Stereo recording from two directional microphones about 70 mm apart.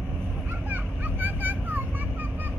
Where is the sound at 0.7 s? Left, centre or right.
Right.